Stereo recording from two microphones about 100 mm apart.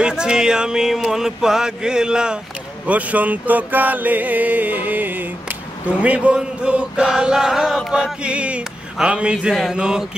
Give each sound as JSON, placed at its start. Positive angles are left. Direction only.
{"t": 0.0, "sound": "choir", "side_deg": -10}